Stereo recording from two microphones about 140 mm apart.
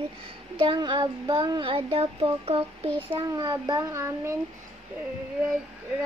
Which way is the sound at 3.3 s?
25° right (ahead or behind).